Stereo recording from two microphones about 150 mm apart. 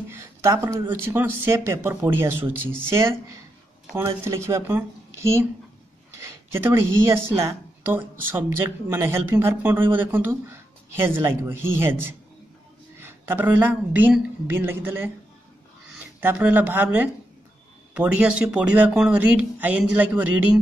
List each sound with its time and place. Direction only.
0.1 s speech: 20° right (ahead or behind)
6.1 s speech: 15° right (ahead or behind)